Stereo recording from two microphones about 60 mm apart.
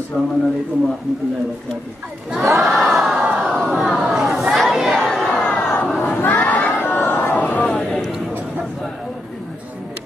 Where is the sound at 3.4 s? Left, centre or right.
Centre.